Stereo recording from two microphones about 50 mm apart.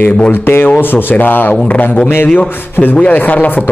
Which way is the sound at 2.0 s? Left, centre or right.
Left.